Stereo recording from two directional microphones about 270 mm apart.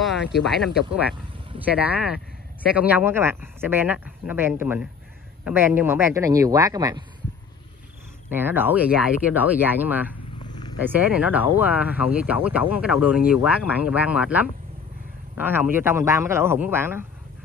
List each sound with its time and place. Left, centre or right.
0.4 s speech: centre
8.3 s speech: centre
10.5 s purr: centre
10.8 s speech: centre